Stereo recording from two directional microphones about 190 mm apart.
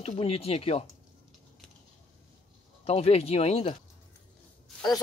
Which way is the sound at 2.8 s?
30° left (ahead or behind).